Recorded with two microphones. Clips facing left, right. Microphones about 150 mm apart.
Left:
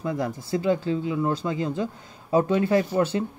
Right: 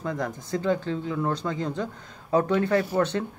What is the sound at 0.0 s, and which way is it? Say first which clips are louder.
Speech: left 2 dB; 25° left (ahead or behind).